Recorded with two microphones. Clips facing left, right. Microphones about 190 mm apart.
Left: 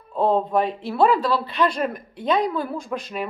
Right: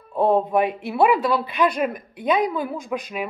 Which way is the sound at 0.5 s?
15° right (ahead or behind).